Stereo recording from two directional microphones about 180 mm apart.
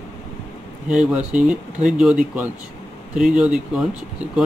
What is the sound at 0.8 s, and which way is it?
Speech, 5° right (ahead or behind).